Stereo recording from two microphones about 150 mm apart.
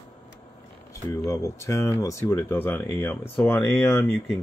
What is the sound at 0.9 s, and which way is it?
Speech, 20° left (ahead or behind).